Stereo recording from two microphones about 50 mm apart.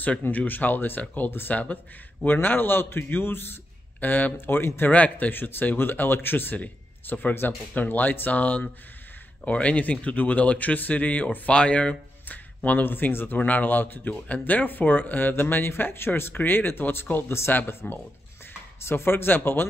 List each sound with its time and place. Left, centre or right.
0.3 s a man's voice: left
12.3 s speech: left